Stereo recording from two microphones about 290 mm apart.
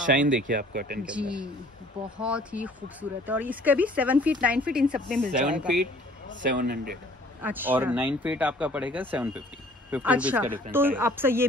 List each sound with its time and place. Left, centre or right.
0.5 s speech: right
1.0 s speech: centre
6.5 s speech: right
7.4 s speech: centre